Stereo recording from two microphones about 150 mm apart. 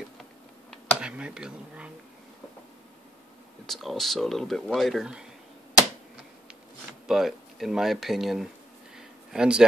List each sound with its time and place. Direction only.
1.0 s speech: 5° right (ahead or behind)
3.6 s speech: centre (ahead or behind)
6.9 s speech: centre (ahead or behind)
8.9 s a sound: 5° right (ahead or behind)